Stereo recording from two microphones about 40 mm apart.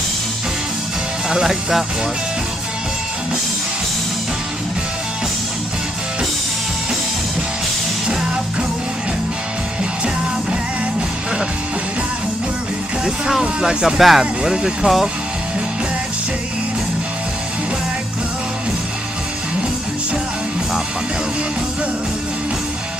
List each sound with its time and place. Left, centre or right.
1.5 s speech: centre
13.4 s speech: centre
14.4 s speech: centre